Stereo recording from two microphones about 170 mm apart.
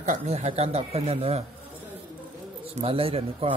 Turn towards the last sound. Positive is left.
turn(degrees=-35)  # may be behind; listen again after turning